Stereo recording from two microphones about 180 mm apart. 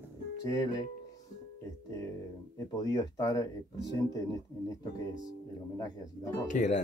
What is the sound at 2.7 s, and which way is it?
Speech, 20° left (ahead or behind).